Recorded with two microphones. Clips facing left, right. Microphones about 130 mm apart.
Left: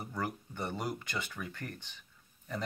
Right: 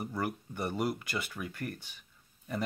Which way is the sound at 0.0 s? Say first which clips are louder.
Right 3 dB; 10° right (ahead or behind).